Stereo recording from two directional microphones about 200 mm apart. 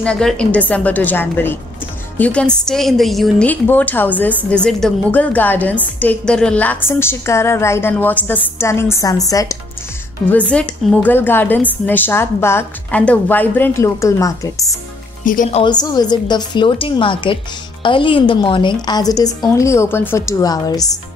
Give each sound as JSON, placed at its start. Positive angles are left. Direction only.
{"t": 0.0, "sound": "a woman's voice", "side_deg": 5}
{"t": 10.3, "sound": "a woman's voice", "side_deg": 5}
{"t": 15.2, "sound": "speech", "side_deg": 40}
{"t": 15.6, "sound": "a woman's voice", "side_deg": 20}